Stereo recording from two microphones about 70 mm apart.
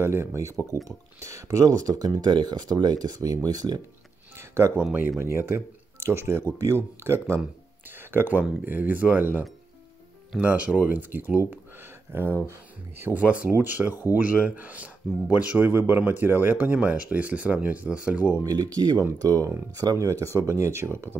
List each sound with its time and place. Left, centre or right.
0.0 s speech: right
4.4 s speech: right
13.1 s speech: right
18.4 s speech: right